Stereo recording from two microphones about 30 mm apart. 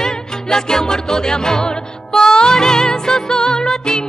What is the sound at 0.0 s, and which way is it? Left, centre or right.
Music, centre.